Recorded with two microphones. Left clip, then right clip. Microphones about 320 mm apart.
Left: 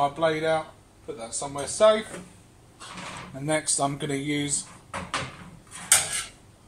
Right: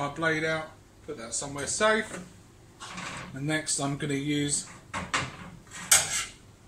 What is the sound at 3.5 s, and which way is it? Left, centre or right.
Speech, left.